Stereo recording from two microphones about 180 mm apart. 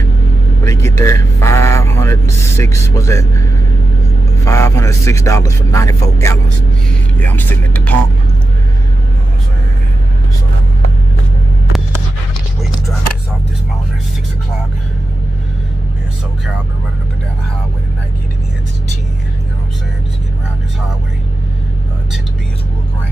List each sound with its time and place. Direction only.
0.7 s speech: 15° left (ahead or behind)
4.5 s speech: 15° left (ahead or behind)